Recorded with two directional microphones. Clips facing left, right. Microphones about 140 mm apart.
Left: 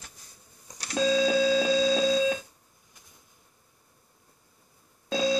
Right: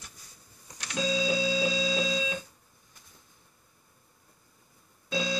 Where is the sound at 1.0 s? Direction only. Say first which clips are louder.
Left 6 dB; 60° left (ahead or behind).